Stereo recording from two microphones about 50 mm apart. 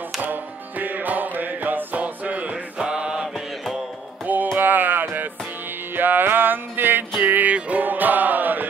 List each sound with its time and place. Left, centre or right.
0.2 s music: right
2.8 s mantra: centre
4.6 s music: right